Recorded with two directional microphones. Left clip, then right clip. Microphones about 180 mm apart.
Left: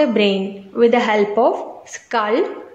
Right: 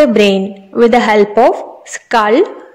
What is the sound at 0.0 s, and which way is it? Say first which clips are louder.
A woman's voice: right 7 dB; 40° right (ahead or behind).